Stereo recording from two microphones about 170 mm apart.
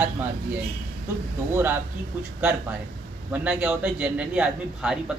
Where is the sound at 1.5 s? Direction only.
10° right (ahead or behind).